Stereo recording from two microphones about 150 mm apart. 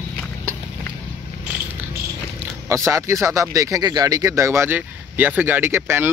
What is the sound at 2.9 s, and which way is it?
Speech, 20° right (ahead or behind).